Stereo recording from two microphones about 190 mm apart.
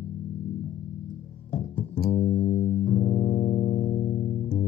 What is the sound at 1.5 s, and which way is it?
Music, 45° left (ahead or behind).